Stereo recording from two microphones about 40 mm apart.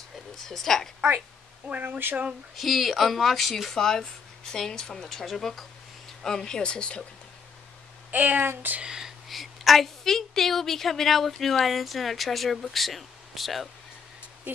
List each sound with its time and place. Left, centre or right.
0.5 s a woman's voice: centre
1.7 s speech: right
2.5 s a woman's voice: centre
3.7 s speech: centre
8.1 s speech: right
8.8 s whispering: centre
9.3 s a woman's voice: centre